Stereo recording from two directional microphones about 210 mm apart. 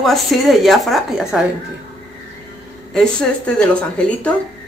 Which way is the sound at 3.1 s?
5° left (ahead or behind).